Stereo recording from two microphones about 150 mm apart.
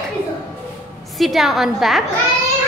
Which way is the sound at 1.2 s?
Centre (ahead or behind).